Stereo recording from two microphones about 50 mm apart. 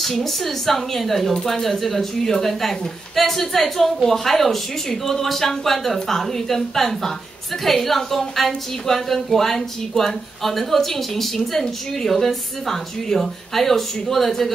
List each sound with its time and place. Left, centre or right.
0.0 s a woman's voice: centre